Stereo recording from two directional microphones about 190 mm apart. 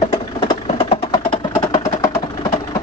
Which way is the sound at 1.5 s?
15° left (ahead or behind).